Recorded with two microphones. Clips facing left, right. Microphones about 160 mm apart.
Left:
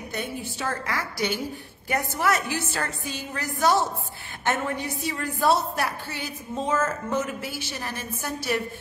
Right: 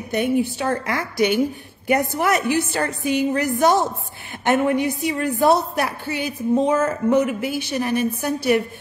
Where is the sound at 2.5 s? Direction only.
15° right (ahead or behind).